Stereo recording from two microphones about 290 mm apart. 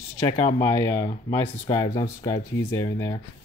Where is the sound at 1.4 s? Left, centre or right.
Centre.